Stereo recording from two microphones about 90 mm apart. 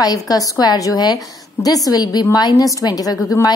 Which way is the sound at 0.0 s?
45° left (ahead or behind).